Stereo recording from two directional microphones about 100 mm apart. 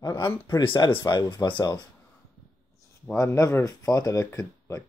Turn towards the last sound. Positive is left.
turn(degrees=35)  # may be behind; listen again after turning